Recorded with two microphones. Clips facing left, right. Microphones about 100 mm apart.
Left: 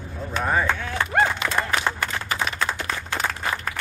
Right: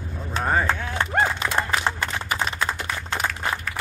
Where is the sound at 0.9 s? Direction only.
25° right (ahead or behind).